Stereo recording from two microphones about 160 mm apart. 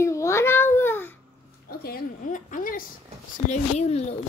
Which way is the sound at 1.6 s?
65° left (ahead or behind).